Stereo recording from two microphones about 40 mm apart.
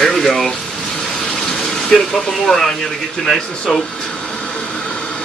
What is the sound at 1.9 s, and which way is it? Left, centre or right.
Speech, centre.